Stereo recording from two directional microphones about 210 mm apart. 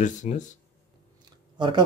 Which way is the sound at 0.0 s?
35° left (ahead or behind).